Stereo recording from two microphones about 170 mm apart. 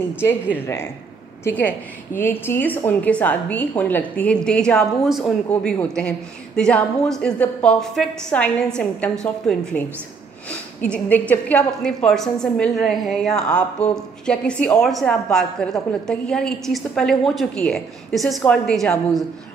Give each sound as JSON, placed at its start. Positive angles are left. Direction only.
{"t": 0.2, "sound": "a woman's voice", "side_deg": 10}